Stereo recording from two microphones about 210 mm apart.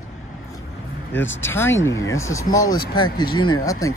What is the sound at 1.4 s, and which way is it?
Speech, 10° left (ahead or behind).